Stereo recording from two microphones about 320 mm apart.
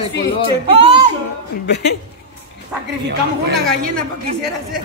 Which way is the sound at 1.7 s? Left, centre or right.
Left.